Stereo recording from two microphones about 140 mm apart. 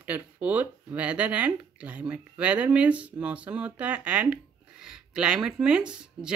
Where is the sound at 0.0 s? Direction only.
10° right (ahead or behind).